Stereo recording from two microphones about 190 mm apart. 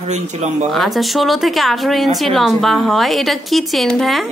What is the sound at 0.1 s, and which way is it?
Speech, 35° right (ahead or behind).